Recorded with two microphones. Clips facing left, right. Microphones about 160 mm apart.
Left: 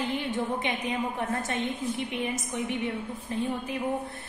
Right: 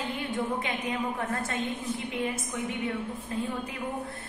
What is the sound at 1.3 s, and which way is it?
A woman's voice, 20° left (ahead or behind).